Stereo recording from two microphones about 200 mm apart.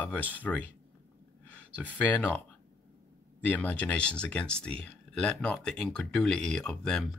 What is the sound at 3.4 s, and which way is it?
Speech, 10° left (ahead or behind).